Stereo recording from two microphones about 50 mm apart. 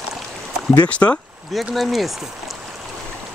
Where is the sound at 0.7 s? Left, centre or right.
Left.